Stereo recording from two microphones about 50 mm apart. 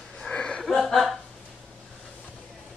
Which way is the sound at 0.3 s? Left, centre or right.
Centre.